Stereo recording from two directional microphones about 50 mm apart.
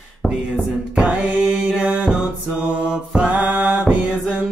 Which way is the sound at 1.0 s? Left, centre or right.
Right.